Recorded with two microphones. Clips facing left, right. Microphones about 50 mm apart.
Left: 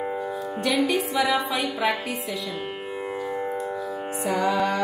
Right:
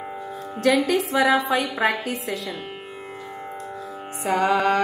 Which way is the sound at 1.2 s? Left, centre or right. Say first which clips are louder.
Right 4 dB; right.